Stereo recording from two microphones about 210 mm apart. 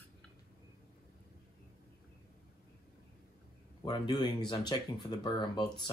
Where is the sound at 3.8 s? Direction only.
20° left (ahead or behind).